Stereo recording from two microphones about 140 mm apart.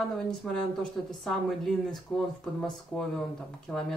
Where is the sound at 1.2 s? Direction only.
Centre (ahead or behind).